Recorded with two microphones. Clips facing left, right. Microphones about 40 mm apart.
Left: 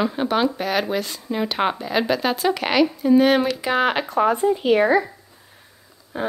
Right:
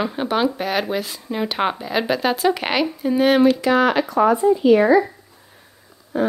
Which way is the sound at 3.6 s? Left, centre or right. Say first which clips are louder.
Right 3 dB; centre.